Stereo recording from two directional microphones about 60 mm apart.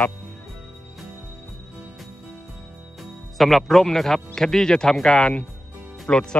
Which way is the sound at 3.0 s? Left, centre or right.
Centre.